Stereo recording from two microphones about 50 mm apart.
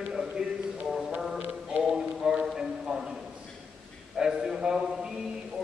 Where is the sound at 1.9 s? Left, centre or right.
Centre.